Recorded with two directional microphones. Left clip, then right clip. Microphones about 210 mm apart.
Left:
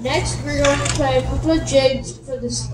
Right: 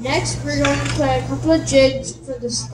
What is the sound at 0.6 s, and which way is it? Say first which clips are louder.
Speech: left 3 dB; 40° left (ahead or behind).